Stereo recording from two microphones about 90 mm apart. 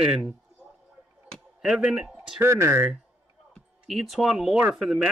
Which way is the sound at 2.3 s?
30° right (ahead or behind).